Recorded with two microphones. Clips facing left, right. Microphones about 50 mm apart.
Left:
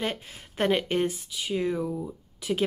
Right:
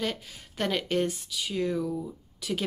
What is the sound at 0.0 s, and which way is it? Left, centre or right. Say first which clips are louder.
Speech: left 1 dB; left.